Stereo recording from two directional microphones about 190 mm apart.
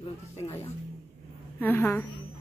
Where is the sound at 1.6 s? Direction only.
10° left (ahead or behind).